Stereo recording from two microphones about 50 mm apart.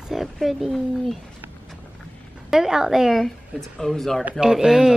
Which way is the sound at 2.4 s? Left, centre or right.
Centre.